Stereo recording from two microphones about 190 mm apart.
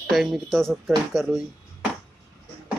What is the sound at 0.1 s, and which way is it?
Speech, centre (ahead or behind).